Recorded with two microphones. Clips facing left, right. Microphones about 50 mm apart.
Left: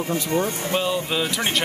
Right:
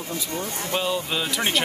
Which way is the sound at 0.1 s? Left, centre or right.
Left.